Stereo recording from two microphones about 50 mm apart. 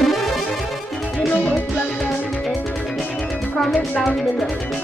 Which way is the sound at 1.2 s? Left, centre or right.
Left.